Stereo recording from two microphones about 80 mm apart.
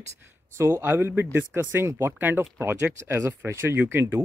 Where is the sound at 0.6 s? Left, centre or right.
Right.